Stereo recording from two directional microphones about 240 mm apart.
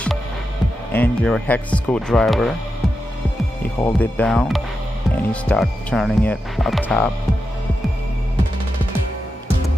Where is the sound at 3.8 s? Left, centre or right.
Centre.